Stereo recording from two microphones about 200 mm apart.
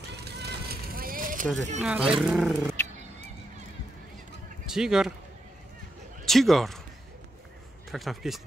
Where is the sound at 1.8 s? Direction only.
5° right (ahead or behind).